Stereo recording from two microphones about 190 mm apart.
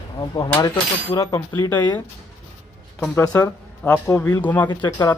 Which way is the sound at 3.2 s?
10° left (ahead or behind).